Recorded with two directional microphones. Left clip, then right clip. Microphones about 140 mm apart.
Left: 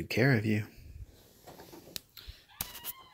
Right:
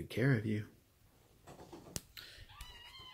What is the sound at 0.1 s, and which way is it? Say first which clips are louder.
Speech: left 7 dB; 40° left (ahead or behind).